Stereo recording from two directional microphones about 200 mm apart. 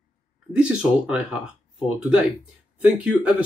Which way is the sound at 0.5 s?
5° right (ahead or behind).